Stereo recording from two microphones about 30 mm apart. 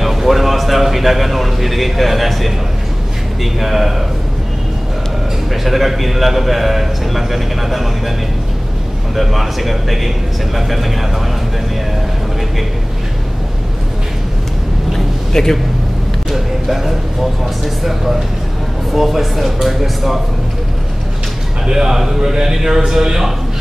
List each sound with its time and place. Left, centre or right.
0.0 s a sound: centre
3.5 s a man's voice: centre
5.5 s a man's voice: centre
9.1 s a man's voice: centre
15.3 s a man's voice: centre
16.3 s speech: centre
18.9 s speech: centre
21.6 s speech: centre